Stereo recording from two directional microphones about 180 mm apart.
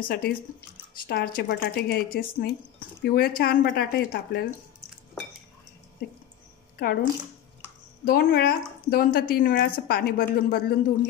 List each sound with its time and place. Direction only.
0.1 s speech: 60° left (ahead or behind)
6.8 s speech: 55° left (ahead or behind)